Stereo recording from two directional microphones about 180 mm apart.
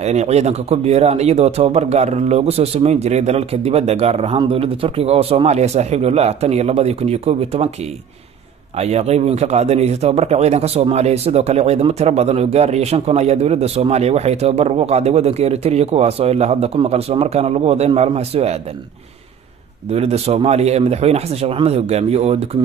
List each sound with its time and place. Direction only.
0.0 s speech: 35° right (ahead or behind)
8.7 s speech: 35° right (ahead or behind)
19.9 s speech: 35° right (ahead or behind)